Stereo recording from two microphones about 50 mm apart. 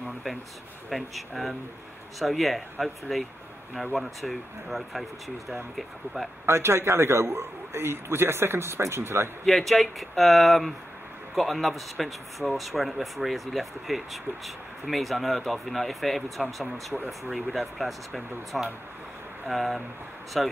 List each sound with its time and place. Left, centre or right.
0.8 s speech: centre
6.4 s a man's voice: right
9.5 s speech: centre